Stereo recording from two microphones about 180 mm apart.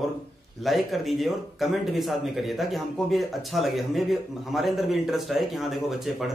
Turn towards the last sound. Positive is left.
turn(degrees=0)  # may be behind; listen again after turning